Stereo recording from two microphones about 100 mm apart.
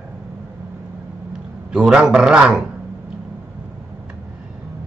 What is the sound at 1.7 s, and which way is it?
Speech, 10° right (ahead or behind).